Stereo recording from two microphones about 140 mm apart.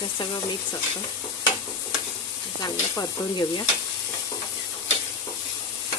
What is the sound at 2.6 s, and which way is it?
Stir, 30° left (ahead or behind).